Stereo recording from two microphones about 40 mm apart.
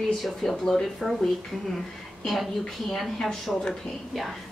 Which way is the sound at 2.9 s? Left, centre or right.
Centre.